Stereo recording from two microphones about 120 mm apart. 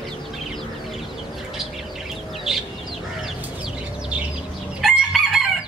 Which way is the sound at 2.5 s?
5° right (ahead or behind).